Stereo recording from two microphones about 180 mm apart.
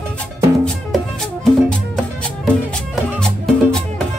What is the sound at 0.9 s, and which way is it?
Music, centre (ahead or behind).